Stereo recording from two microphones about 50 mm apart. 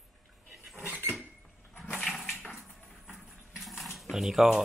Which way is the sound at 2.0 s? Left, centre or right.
Centre.